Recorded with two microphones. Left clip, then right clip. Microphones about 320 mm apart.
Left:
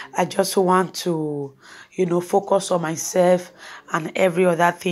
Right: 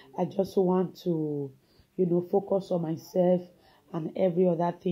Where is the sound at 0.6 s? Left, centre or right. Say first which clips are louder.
Left 8 dB; left.